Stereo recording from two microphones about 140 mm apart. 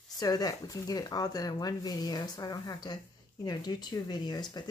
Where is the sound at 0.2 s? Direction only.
25° left (ahead or behind).